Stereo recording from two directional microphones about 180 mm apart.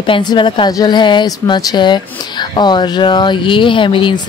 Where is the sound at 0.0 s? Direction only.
25° left (ahead or behind).